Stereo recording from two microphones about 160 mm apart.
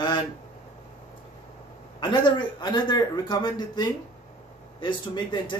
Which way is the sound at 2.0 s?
25° left (ahead or behind).